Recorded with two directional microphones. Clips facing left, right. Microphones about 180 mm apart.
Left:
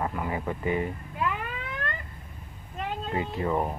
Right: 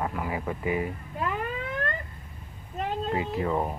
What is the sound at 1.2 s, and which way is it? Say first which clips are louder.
Emergency vehicle: right 1 dB; 40° right (ahead or behind).